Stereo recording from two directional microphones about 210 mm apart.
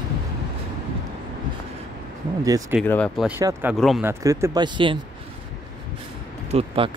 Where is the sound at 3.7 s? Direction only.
Centre (ahead or behind).